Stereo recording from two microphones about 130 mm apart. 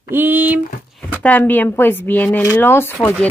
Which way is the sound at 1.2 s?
10° left (ahead or behind).